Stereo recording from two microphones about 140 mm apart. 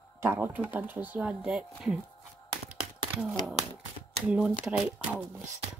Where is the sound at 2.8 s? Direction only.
5° right (ahead or behind).